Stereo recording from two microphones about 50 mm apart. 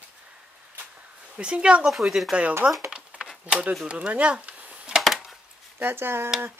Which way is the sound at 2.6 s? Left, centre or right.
Right.